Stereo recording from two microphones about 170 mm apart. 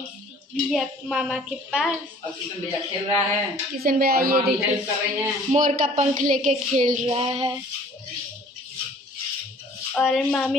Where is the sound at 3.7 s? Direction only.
60° right (ahead or behind).